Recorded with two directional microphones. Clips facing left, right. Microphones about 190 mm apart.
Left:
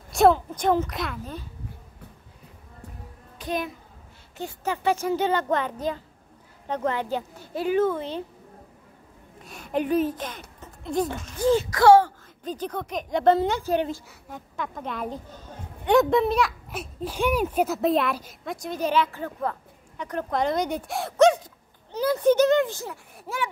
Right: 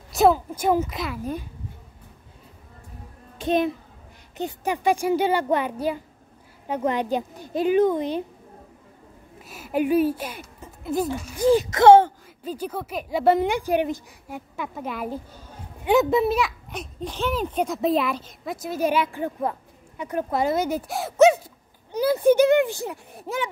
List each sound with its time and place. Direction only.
0.1 s a woman's voice: 5° right (ahead or behind)
1.2 s speech: 15° right (ahead or behind)
3.3 s a child's voice: 25° right (ahead or behind)
9.4 s speech: 5° right (ahead or behind); by 12.1 s 20° right (ahead or behind)
12.4 s a woman's voice: 10° right (ahead or behind)